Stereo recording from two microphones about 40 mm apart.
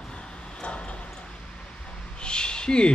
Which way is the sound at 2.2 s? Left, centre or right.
Left.